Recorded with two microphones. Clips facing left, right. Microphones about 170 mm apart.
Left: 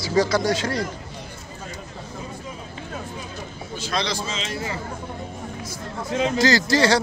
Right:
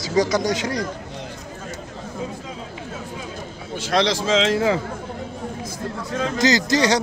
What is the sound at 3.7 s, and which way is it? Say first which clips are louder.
Speech: right 7 dB; 80° right.